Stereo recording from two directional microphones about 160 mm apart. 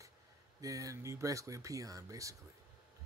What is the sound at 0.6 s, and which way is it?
Speech, 20° right (ahead or behind).